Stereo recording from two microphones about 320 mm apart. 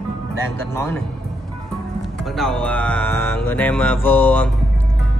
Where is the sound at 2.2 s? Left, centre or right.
Centre.